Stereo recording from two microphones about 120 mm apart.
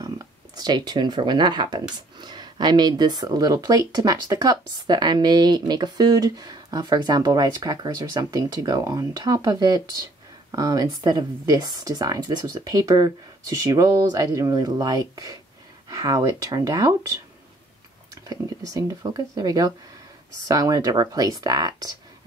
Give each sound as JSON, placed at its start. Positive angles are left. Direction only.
{"t": 0.0, "sound": "speech", "side_deg": -35}
{"t": 18.3, "sound": "speech", "side_deg": -30}